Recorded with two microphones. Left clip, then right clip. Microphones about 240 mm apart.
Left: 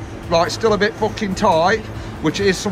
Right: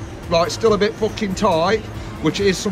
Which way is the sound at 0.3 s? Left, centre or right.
Centre.